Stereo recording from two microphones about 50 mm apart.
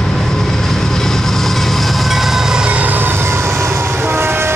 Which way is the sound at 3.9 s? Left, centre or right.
Right.